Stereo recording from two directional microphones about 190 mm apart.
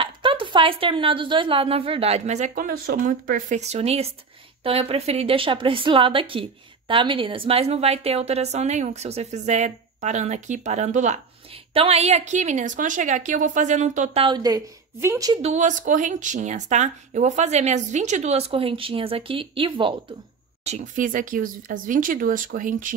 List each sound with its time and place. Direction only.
0.0 s a woman's voice: 25° right (ahead or behind)
14.2 s a woman's voice: 20° right (ahead or behind)
15.4 s a woman's voice: 40° right (ahead or behind)
20.6 s speech: 40° right (ahead or behind)